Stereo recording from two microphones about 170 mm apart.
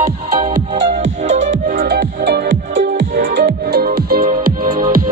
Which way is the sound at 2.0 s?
75° right (ahead or behind).